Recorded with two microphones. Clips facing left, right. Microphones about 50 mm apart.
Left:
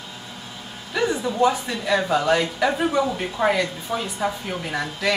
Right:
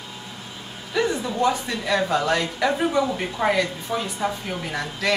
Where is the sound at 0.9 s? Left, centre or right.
Centre.